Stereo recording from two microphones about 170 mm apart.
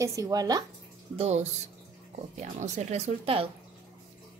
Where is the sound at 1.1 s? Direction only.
40° right (ahead or behind).